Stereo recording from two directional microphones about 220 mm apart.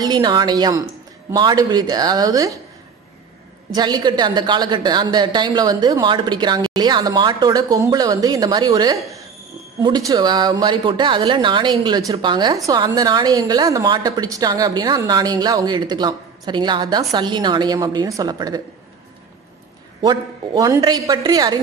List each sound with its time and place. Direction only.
0.0 s a woman's voice: 20° right (ahead or behind)
3.7 s a woman's voice: 20° right (ahead or behind)
20.0 s a woman's voice: 15° right (ahead or behind)